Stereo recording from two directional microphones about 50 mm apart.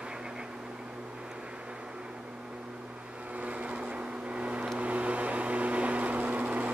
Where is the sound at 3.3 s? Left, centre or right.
Right.